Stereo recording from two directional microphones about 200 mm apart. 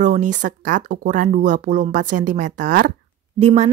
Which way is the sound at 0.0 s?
40° right (ahead or behind).